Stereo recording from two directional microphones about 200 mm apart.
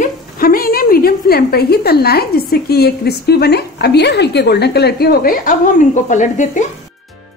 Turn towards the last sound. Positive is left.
turn(degrees=40)  # may be behind; listen again after turning